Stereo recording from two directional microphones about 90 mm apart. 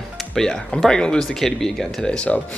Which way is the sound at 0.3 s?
5° left (ahead or behind).